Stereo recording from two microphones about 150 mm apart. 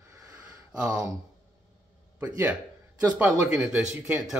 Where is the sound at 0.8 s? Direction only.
25° right (ahead or behind).